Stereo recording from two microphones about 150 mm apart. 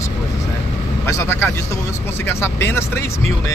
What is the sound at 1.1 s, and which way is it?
Speech, 20° left (ahead or behind).